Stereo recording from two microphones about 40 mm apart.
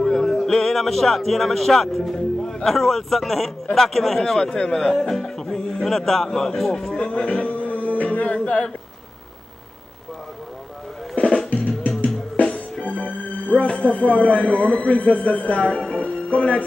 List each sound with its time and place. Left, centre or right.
0.0 s a man's voice: centre
4.2 s speech: centre
7.0 s speech: left
7.4 s music: left
11.1 s music: left
12.0 s music: left
13.7 s speech: left
15.9 s music: left